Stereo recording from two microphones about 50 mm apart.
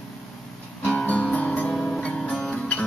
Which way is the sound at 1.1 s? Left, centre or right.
Left.